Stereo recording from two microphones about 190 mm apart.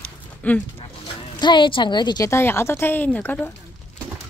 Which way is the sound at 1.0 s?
25° left (ahead or behind).